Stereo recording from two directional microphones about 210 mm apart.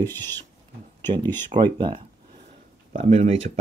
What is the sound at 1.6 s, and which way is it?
Speech, 20° right (ahead or behind).